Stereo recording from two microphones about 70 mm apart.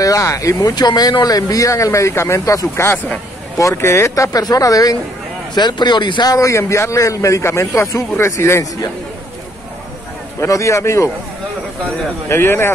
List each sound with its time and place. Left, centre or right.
0.0 s speech: left
0.6 s speech: left
5.5 s speech: left
6.4 s speech: left
10.4 s speech: left
12.3 s speech: left